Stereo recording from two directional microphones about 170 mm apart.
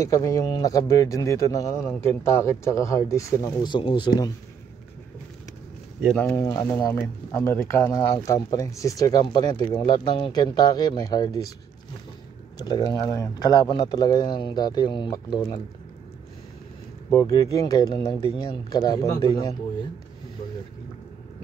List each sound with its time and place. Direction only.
0.0 s speech: 20° left (ahead or behind)
5.9 s speech: 5° left (ahead or behind)
6.3 s speech: 20° left (ahead or behind)
12.5 s speech: 25° left (ahead or behind)
17.1 s speech: 20° left (ahead or behind)